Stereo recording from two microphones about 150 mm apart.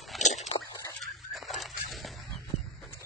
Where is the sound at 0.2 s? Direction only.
50° left (ahead or behind).